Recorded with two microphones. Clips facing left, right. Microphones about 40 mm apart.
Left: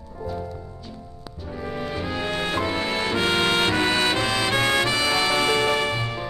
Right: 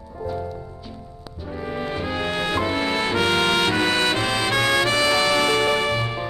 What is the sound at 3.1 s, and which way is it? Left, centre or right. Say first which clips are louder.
Music: right 1 dB; centre.